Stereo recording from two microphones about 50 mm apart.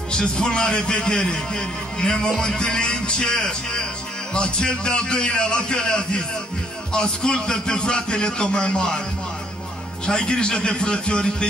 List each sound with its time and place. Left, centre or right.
0.1 s a man's voice: centre
10.0 s a man's voice: centre